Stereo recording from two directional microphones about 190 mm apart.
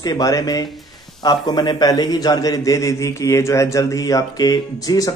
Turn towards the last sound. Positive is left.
turn(degrees=20)  # may be behind; listen again after turning